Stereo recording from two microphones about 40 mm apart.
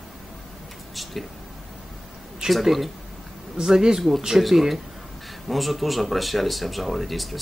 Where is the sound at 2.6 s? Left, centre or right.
Centre.